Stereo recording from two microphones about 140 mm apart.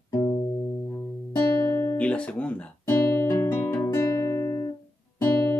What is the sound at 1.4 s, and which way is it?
Guitar, 15° left (ahead or behind).